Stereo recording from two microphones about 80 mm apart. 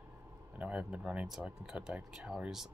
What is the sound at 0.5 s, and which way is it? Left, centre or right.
A man's voice, centre.